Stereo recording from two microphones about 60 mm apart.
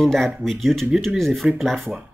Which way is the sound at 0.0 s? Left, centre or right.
Centre.